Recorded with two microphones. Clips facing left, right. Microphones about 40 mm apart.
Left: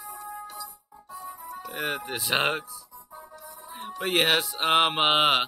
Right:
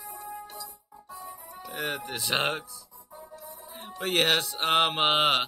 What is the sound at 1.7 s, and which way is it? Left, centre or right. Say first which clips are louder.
Speech: left 2 dB; centre.